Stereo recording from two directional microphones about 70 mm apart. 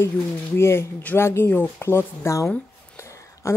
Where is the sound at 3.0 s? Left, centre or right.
Left.